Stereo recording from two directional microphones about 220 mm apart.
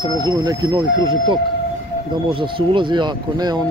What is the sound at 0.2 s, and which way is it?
Speech, 20° right (ahead or behind).